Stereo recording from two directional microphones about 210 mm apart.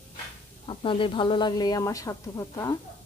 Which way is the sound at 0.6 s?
25° left (ahead or behind).